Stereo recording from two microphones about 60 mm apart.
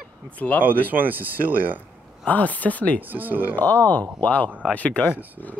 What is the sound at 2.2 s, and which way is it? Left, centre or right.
Speech, left.